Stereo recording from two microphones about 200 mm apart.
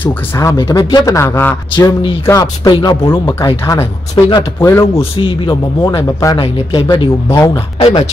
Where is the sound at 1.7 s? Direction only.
25° left (ahead or behind).